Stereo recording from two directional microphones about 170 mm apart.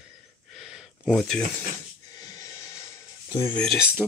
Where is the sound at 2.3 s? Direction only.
20° left (ahead or behind).